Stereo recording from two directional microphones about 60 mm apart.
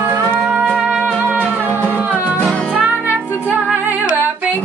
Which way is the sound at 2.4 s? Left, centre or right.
Centre.